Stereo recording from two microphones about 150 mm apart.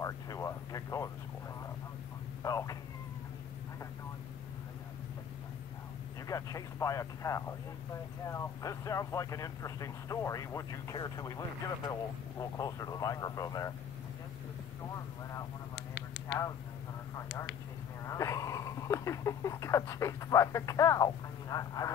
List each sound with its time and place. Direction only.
0.0 s speech: 20° left (ahead or behind)
2.4 s speech: 25° left (ahead or behind)
6.2 s speech: 20° left (ahead or behind)
18.0 s speech: 20° left (ahead or behind)